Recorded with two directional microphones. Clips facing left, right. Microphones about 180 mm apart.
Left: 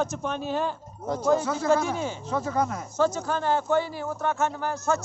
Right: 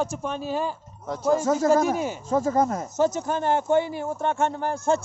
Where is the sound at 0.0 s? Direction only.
5° right (ahead or behind).